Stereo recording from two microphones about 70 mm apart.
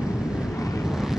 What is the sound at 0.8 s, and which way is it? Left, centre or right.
Vehicle, centre.